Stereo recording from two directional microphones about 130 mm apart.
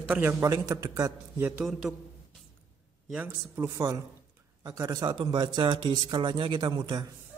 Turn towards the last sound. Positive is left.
turn(degrees=-35)  # may be behind; listen again after turning